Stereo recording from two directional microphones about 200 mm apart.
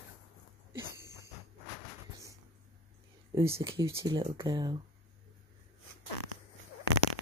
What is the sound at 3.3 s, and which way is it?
Speech, 15° right (ahead or behind).